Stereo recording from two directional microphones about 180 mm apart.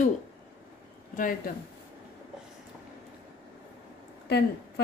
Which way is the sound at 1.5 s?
50° left (ahead or behind).